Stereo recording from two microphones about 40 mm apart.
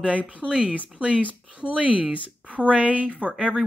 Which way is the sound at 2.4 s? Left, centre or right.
Left.